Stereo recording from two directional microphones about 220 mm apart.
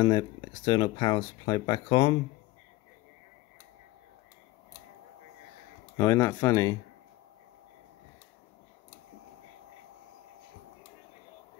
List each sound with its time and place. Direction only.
0.0 s speech: 20° left (ahead or behind)
5.9 s speech: 15° left (ahead or behind)